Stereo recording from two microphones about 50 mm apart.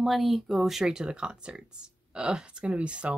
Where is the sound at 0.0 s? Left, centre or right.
Centre.